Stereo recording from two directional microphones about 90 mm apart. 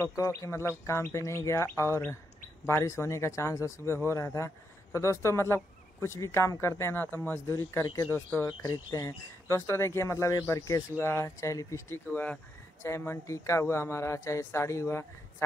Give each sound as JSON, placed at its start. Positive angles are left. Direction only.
{"t": 0.2, "sound": "speech", "side_deg": 35}
{"t": 7.8, "sound": "speech", "side_deg": 40}
{"t": 8.1, "sound": "speech", "side_deg": 25}
{"t": 8.5, "sound": "speech", "side_deg": 45}
{"t": 12.1, "sound": "speech", "side_deg": 20}